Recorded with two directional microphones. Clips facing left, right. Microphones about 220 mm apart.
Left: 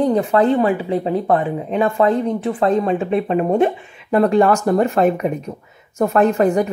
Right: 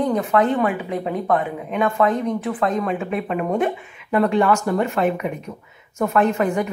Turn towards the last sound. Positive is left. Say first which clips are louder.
# left 4 dB
turn(degrees=40)  # may be behind; listen again after turning